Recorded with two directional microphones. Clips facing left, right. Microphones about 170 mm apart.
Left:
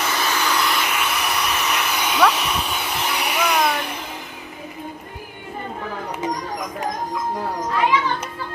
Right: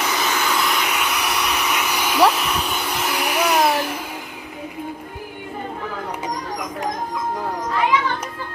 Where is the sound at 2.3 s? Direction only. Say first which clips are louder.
Right 1 dB; centre (ahead or behind).